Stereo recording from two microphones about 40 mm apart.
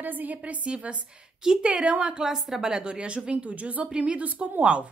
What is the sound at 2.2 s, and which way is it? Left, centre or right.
A woman's voice, centre.